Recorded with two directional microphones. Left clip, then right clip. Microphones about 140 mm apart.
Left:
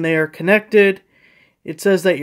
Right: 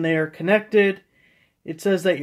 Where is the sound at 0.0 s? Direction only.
50° left (ahead or behind).